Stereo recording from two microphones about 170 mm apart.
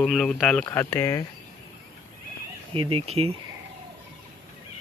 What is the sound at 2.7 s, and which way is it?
Speech, 30° right (ahead or behind).